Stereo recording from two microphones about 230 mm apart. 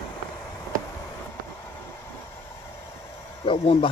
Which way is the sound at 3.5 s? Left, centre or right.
Left.